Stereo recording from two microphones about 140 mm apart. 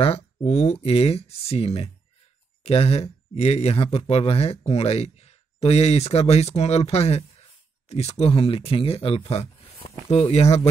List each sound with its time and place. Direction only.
0.0 s speech: 45° left (ahead or behind)